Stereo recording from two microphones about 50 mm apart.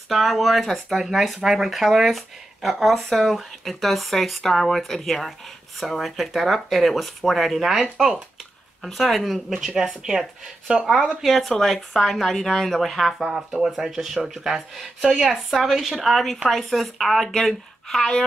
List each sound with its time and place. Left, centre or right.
0.1 s speech: centre
9.6 s speech: centre
10.7 s speech: right
11.2 s a woman's voice: centre